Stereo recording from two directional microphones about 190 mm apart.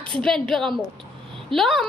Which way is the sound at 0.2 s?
Centre (ahead or behind).